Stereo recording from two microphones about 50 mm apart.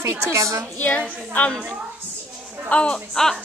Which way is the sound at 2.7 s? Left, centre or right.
Left.